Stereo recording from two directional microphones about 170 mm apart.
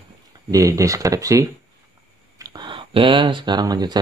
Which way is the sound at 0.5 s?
20° right (ahead or behind).